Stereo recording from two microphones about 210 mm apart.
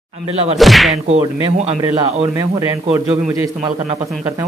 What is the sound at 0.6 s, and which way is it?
Speech, centre (ahead or behind).